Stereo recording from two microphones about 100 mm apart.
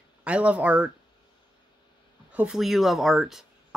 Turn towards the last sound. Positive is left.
turn(degrees=-5)  # may be behind; listen again after turning